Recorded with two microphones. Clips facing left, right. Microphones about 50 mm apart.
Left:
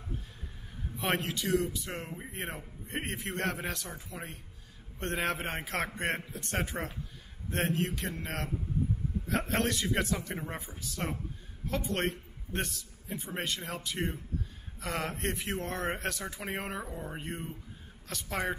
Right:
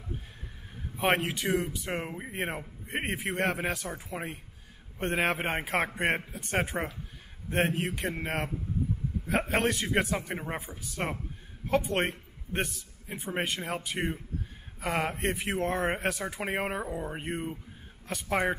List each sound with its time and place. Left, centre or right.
0.9 s a man's voice: right
12.1 s a man's voice: centre
13.1 s a man's voice: right